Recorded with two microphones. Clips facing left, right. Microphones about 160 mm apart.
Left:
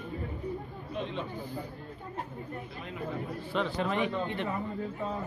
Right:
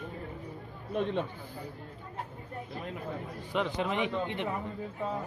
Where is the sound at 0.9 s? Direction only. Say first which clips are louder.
Right 5 dB; 50° right (ahead or behind).